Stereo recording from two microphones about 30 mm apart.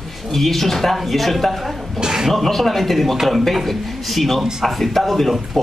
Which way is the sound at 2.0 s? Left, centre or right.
Centre.